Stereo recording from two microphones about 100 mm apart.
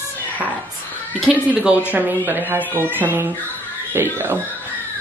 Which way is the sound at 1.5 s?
15° right (ahead or behind).